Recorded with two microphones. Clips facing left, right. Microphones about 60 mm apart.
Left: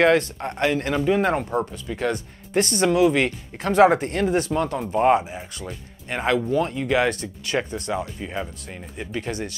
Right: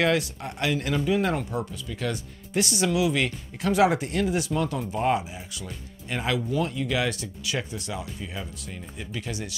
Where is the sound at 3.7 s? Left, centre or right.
Left.